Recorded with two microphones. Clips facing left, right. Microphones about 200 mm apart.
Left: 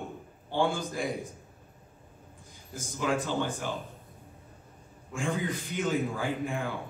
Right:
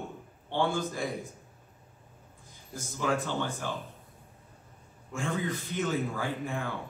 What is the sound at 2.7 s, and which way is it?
A man's voice, 15° left (ahead or behind).